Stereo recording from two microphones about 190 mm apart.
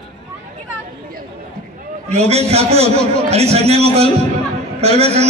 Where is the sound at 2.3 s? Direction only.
35° right (ahead or behind).